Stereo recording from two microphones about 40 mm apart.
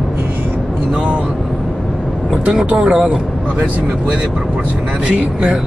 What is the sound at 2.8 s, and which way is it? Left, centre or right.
Speech, right.